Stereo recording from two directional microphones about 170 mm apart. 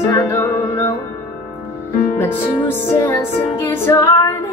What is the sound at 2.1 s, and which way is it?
Music, 10° left (ahead or behind).